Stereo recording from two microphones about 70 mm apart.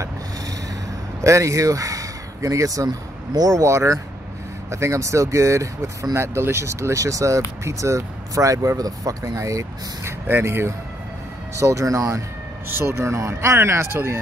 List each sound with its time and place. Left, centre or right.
1.2 s speech: right
10.2 s speech: right
12.6 s speech: right